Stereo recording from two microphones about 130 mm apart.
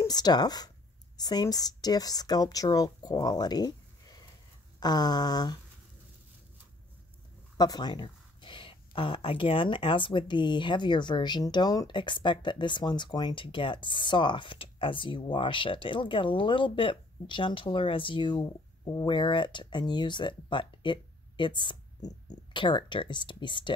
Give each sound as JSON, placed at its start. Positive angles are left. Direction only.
{"t": 0.0, "sound": "speech", "side_deg": 30}
{"t": 7.5, "sound": "speech", "side_deg": 30}